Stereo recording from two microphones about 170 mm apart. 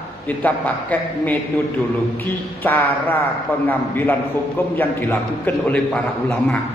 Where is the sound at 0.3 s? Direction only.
10° left (ahead or behind).